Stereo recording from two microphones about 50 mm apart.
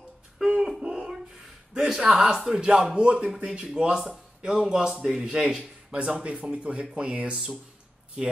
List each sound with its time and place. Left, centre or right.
0.6 s a sound: centre
1.9 s a man's voice: centre
8.2 s a man's voice: centre